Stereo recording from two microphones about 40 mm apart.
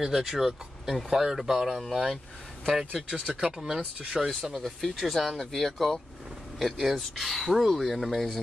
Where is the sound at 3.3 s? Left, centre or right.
Centre.